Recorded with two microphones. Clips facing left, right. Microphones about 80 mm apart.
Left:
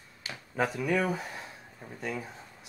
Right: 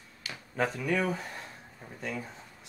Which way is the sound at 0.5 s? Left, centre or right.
Centre.